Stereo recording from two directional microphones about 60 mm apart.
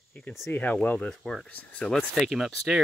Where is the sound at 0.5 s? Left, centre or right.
Left.